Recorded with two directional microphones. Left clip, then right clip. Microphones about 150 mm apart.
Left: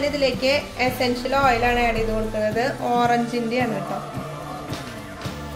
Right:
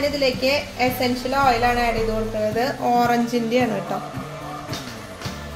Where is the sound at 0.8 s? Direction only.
Centre (ahead or behind).